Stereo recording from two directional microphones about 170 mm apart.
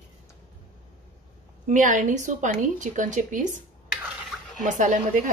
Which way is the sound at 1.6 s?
50° right (ahead or behind).